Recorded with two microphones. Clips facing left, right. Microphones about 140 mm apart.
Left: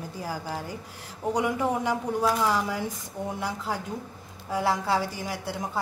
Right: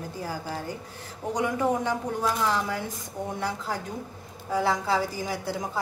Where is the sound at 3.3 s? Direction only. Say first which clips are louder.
Right 1 dB; 5° left (ahead or behind).